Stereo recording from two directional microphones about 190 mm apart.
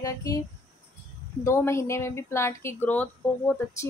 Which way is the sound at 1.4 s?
15° left (ahead or behind).